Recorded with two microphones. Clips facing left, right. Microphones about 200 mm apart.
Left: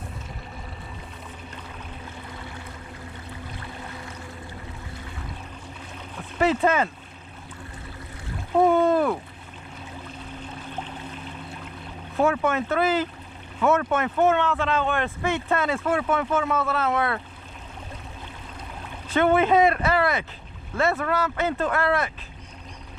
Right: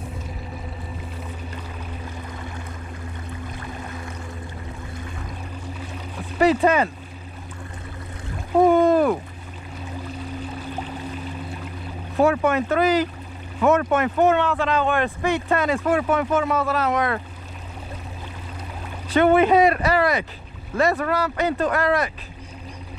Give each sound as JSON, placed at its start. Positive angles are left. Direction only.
{"t": 3.4, "sound": "boat", "side_deg": 25}
{"t": 6.3, "sound": "speech", "side_deg": -15}
{"t": 8.5, "sound": "boat", "side_deg": -15}
{"t": 10.0, "sound": "music", "side_deg": -10}
{"t": 12.2, "sound": "speech", "side_deg": -15}
{"t": 19.1, "sound": "speech", "side_deg": -15}